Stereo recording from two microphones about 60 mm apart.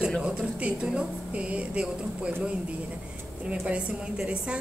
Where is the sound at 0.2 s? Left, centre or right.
Centre.